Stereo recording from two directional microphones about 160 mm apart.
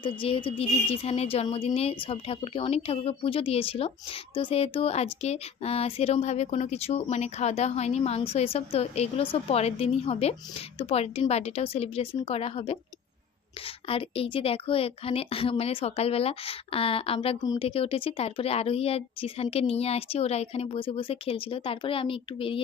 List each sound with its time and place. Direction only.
0.0 s speech: 30° left (ahead or behind)
13.8 s speech: 35° left (ahead or behind)